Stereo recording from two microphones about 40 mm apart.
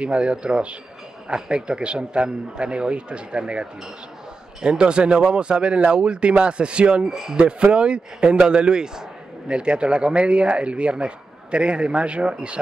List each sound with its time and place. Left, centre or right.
0.0 s speech: right
7.1 s speech: centre
7.3 s speech: right